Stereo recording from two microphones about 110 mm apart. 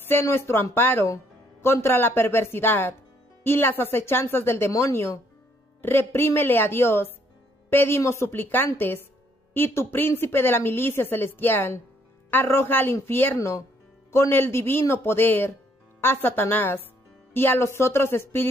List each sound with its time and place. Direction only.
0.1 s a woman's voice: 20° left (ahead or behind)